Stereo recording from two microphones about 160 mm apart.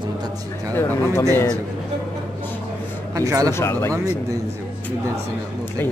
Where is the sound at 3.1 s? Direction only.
20° right (ahead or behind).